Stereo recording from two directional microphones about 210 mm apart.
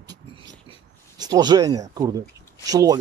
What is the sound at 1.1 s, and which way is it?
Speech, 20° right (ahead or behind).